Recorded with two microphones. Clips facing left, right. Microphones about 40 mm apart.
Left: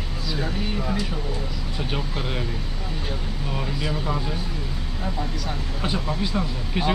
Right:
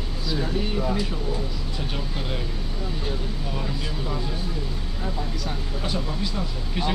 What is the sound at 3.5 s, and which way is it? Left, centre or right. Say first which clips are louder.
Speech: left 6 dB; centre.